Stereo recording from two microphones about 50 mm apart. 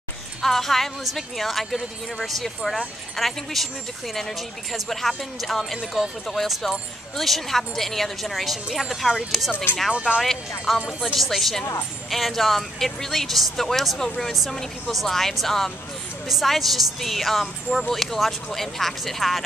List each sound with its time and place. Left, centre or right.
0.4 s speech: centre
9.8 s speech: centre
10.9 s speech: centre
11.1 s speech: centre